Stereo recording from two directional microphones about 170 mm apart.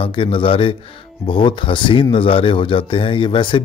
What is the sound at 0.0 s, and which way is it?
A man's voice, 30° left (ahead or behind).